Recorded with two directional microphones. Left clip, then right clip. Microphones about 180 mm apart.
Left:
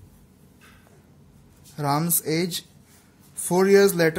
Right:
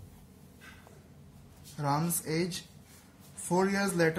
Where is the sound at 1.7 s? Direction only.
45° left (ahead or behind).